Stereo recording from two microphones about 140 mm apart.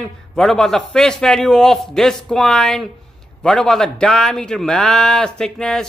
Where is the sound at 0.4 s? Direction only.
5° left (ahead or behind).